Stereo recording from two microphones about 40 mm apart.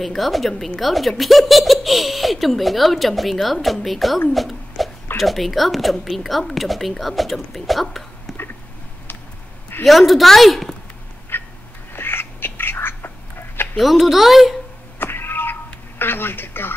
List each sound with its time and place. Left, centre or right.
0.0 s speech: centre
4.3 s a sound: centre
5.1 s speech: centre
9.8 s speech: centre
11.3 s a sound: left
11.9 s duck: left
13.7 s speech: centre
15.0 s cat: left
16.0 s speech: left